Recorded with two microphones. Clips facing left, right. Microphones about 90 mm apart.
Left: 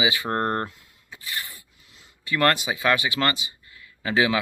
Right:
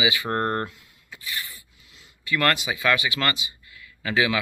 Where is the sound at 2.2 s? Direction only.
30° left (ahead or behind).